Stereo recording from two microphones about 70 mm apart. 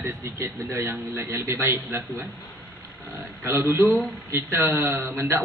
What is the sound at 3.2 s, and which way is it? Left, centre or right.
A man's voice, right.